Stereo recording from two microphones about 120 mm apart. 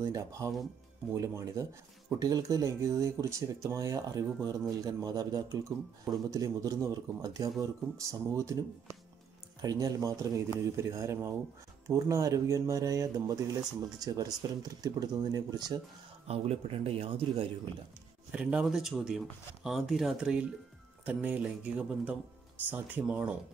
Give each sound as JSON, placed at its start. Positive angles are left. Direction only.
{"t": 0.0, "sound": "speech", "side_deg": -25}
{"t": 16.3, "sound": "speech", "side_deg": -55}
{"t": 18.3, "sound": "speech", "side_deg": -10}